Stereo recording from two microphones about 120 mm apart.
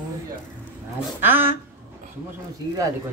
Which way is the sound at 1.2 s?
15° right (ahead or behind).